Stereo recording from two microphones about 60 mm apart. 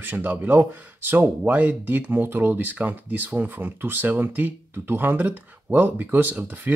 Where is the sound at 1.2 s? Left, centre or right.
Right.